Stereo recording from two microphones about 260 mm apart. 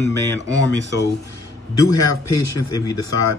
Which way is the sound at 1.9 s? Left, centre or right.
Left.